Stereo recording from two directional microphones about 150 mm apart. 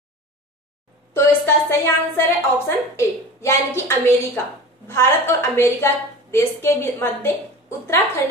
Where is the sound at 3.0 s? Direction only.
20° left (ahead or behind).